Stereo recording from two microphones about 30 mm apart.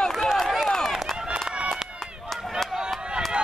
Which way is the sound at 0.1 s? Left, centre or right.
Centre.